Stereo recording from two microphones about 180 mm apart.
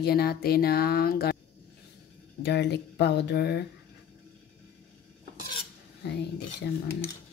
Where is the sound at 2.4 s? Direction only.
75° left (ahead or behind).